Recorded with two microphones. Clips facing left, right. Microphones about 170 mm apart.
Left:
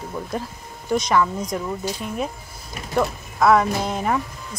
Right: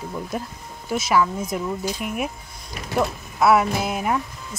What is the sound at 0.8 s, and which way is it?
Speech, 5° right (ahead or behind).